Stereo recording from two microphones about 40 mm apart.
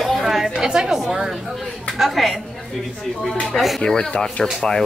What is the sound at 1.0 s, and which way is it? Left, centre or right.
A woman's voice, centre.